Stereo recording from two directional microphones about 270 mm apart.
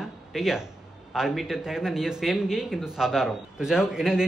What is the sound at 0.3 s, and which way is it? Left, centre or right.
Speech, centre.